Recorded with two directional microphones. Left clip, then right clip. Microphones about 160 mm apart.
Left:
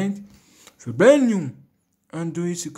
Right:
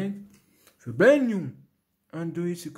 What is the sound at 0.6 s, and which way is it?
Speech, 5° left (ahead or behind).